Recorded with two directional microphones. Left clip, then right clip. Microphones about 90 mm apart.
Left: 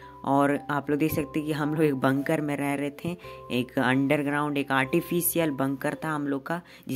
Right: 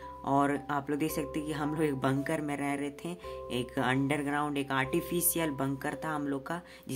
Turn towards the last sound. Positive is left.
turn(degrees=40)  # may be behind; listen again after turning